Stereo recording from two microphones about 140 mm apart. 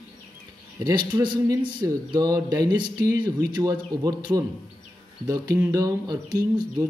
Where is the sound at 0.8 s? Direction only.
30° right (ahead or behind).